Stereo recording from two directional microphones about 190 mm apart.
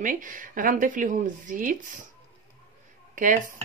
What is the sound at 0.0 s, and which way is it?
Speech, 45° right (ahead or behind).